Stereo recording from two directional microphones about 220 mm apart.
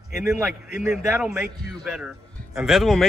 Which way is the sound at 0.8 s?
5° right (ahead or behind).